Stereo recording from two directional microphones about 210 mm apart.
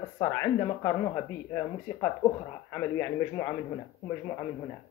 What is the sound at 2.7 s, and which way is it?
Speech, 10° left (ahead or behind).